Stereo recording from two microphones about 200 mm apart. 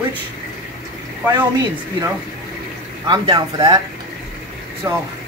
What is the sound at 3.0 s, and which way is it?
Speech, 20° right (ahead or behind).